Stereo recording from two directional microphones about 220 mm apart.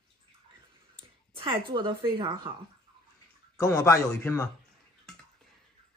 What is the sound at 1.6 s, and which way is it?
Speech, 20° right (ahead or behind).